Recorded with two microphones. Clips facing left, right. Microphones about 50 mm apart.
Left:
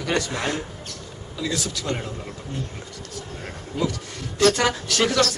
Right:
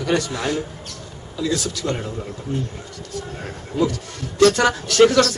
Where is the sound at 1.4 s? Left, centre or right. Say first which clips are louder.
Right 4 dB; centre.